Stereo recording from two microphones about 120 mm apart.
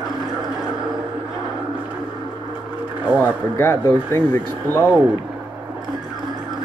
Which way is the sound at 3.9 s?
20° left (ahead or behind).